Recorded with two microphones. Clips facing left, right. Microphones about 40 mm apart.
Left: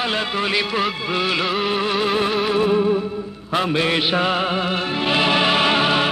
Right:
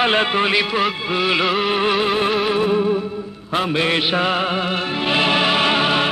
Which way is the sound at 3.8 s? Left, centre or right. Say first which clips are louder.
Right 1 dB; right.